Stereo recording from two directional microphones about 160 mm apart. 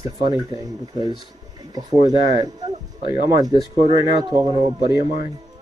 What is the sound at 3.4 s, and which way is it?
Speech, 25° right (ahead or behind).